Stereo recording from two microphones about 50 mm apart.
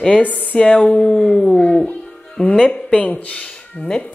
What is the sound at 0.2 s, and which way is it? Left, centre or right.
Speech, left.